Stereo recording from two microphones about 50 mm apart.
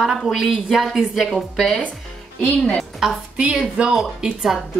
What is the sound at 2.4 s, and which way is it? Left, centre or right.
Speech, left.